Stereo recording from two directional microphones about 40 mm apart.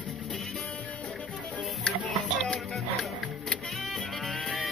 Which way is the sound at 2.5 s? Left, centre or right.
Centre.